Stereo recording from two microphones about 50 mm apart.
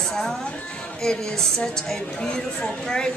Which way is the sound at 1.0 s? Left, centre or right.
Centre.